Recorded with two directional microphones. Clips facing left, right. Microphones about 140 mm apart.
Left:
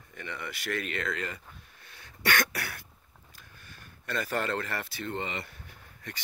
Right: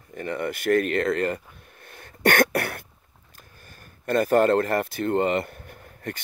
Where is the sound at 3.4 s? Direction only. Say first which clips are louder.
Right 4 dB; 45° right (ahead or behind).